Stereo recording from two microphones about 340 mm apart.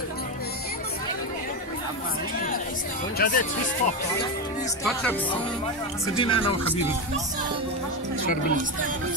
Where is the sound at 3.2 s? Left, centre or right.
Left.